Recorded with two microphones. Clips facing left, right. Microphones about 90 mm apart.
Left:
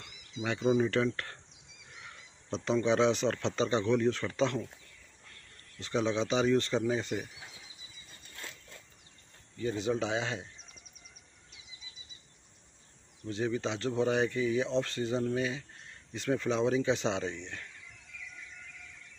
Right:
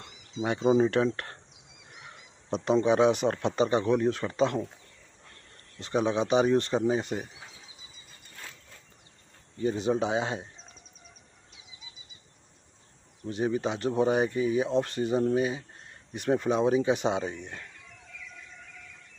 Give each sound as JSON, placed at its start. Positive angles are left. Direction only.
{"t": 0.0, "sound": "speech", "side_deg": -25}
{"t": 5.8, "sound": "speech", "side_deg": -20}
{"t": 9.6, "sound": "speech", "side_deg": -25}
{"t": 13.3, "sound": "speech", "side_deg": -15}